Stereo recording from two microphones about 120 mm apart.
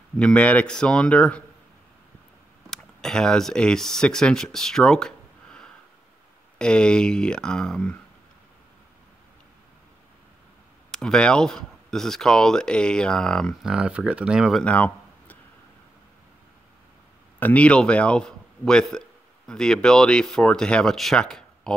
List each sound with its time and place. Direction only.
0.2 s speech: 10° left (ahead or behind)
2.7 s speech: 5° left (ahead or behind)
10.9 s speech: 5° left (ahead or behind)
14.6 s a sound: 10° left (ahead or behind)
17.4 s speech: 10° left (ahead or behind)